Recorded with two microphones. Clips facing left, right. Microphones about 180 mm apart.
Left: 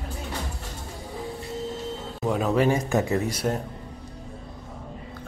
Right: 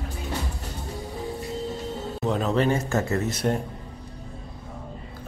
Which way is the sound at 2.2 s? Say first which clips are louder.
Left 1 dB; 10° left (ahead or behind).